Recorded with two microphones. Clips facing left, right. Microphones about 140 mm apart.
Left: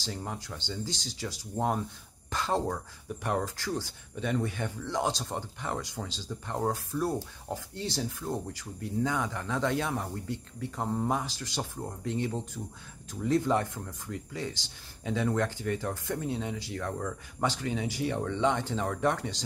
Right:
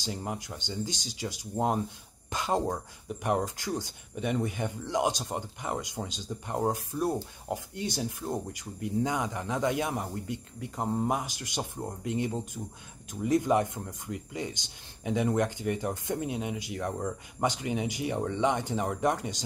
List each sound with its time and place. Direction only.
0.0 s speech: 15° right (ahead or behind)
2.2 s a sound: 15° right (ahead or behind)
3.3 s speech: 15° right (ahead or behind)